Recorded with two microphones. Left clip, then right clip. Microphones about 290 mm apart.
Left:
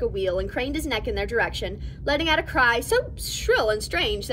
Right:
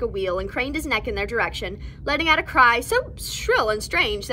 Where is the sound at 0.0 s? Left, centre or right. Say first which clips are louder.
Even; centre.